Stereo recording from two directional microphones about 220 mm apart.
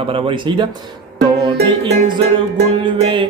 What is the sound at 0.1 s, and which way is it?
Music, 20° right (ahead or behind).